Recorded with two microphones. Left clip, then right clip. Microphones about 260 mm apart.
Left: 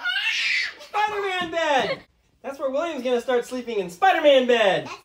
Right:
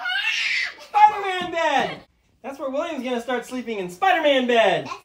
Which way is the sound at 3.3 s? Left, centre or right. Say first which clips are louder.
Left 3 dB; right.